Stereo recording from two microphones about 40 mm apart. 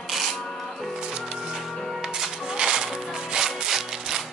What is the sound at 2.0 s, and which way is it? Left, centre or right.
Music, centre.